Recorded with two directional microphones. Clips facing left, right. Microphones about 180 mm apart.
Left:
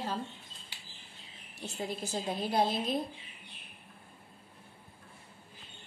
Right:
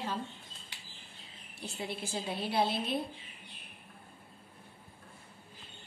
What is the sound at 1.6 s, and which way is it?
A woman's voice, 40° left (ahead or behind).